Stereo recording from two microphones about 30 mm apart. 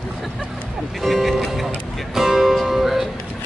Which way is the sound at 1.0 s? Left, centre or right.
Centre.